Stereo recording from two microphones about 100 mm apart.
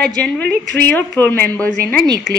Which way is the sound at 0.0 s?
15° left (ahead or behind).